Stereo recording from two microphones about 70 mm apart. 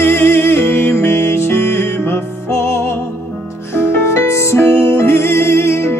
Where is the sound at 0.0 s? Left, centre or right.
Left.